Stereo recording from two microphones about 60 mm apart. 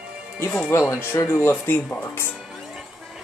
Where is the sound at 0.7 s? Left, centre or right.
Left.